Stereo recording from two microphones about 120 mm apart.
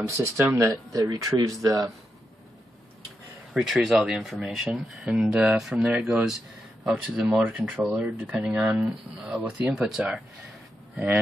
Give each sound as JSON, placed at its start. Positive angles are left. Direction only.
{"t": 0.1, "sound": "speech", "side_deg": -25}
{"t": 3.5, "sound": "speech", "side_deg": 0}